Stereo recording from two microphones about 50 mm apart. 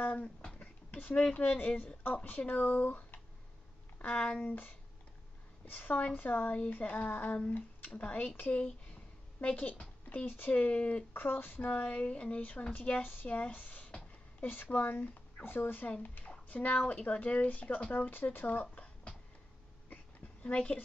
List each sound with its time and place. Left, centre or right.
0.0 s speech: left
0.6 s a sound: left
1.2 s speech: left
4.0 s speech: left
4.4 s speech: left
8.9 s a sound: left
10.0 s speech: left
11.1 s speech: left
18.1 s speech: left
20.4 s speech: left